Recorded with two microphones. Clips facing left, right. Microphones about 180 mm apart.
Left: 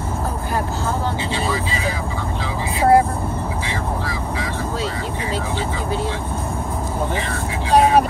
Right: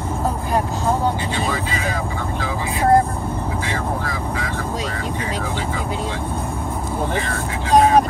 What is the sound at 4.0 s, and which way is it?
Speech, 50° right (ahead or behind).